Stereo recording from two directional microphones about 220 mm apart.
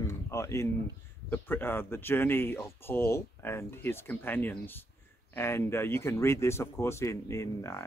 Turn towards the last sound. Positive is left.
turn(degrees=10)  # may be behind; listen again after turning